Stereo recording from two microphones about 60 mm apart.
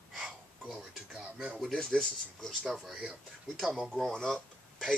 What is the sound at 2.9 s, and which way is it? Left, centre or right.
Speech, centre.